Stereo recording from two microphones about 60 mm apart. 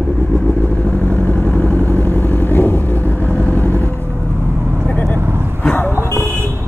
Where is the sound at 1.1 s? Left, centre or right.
Left.